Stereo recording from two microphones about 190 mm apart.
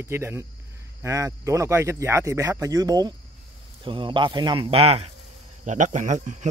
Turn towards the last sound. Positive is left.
turn(degrees=-40)  # may be behind; listen again after turning